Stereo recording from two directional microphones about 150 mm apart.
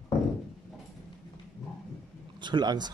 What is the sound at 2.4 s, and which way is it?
Speech, 30° right (ahead or behind).